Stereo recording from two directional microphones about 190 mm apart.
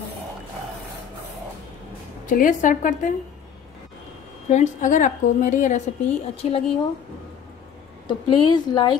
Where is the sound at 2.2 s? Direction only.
45° left (ahead or behind).